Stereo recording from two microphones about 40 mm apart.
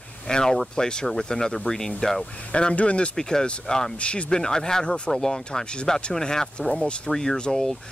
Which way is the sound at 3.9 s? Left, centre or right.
Left.